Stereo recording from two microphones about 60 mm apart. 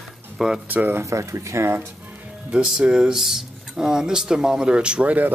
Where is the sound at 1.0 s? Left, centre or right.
Right.